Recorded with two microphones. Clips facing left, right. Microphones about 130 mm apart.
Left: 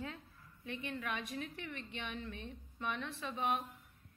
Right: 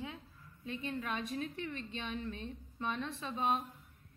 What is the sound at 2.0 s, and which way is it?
A woman's voice, 25° right (ahead or behind).